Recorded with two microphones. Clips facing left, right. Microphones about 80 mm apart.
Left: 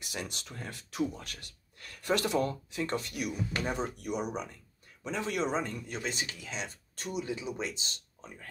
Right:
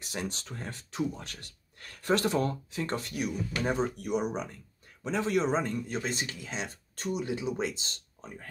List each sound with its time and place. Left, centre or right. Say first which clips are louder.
0.0 s speech: right 3 dB; right